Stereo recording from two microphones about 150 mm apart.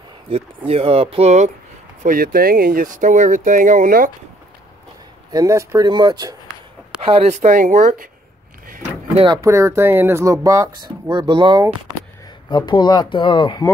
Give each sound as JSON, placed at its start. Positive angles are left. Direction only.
{"t": 0.3, "sound": "speech", "side_deg": -40}
{"t": 2.0, "sound": "speech", "side_deg": -75}
{"t": 5.3, "sound": "speech", "side_deg": -20}
{"t": 7.2, "sound": "speech", "side_deg": -50}
{"t": 9.1, "sound": "speech", "side_deg": -35}
{"t": 9.4, "sound": "speech", "side_deg": -20}
{"t": 12.4, "sound": "speech", "side_deg": 30}